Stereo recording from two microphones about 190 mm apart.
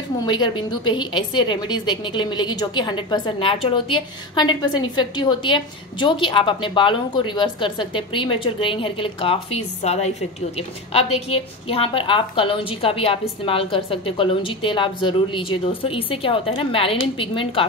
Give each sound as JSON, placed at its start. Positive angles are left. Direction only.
{"t": 0.2, "sound": "a woman's voice", "side_deg": 25}